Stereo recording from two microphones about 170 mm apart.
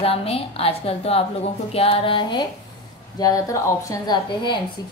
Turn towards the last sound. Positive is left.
turn(degrees=25)  # may be behind; listen again after turning